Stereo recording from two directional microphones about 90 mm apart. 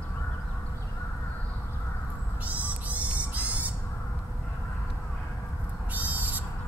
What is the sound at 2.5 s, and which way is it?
Owl, 15° right (ahead or behind).